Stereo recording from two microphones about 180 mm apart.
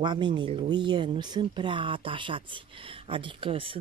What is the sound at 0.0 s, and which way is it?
Speech, 25° right (ahead or behind).